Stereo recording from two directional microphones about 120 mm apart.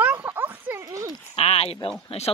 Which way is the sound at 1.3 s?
55° left (ahead or behind).